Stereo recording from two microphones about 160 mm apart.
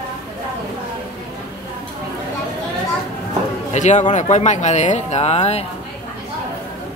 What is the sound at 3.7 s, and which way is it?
Speech, 45° left (ahead or behind).